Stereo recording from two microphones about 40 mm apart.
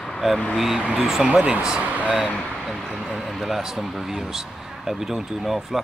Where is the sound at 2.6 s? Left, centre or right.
Centre.